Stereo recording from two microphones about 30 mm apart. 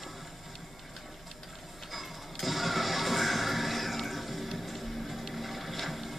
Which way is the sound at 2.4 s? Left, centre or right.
Centre.